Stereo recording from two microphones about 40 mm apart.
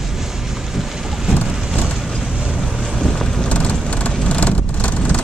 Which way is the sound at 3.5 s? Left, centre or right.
Left.